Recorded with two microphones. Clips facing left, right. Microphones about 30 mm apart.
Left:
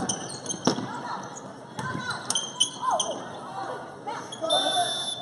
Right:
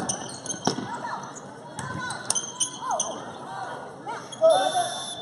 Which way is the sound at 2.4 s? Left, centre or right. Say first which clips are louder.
Left 4 dB; left.